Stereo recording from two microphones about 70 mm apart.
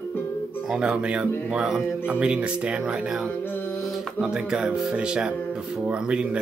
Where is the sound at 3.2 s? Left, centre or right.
Left.